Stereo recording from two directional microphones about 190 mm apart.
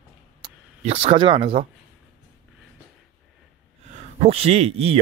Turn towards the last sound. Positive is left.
turn(degrees=-30)  # may be behind; listen again after turning